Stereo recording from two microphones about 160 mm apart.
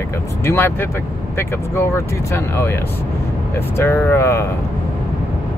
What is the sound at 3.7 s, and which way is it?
Speech, 15° left (ahead or behind).